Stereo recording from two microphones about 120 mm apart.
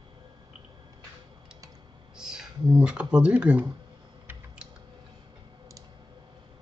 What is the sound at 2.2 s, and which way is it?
Speech, 5° right (ahead or behind).